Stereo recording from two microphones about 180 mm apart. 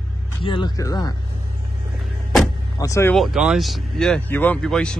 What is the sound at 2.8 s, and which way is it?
Speech, 15° left (ahead or behind).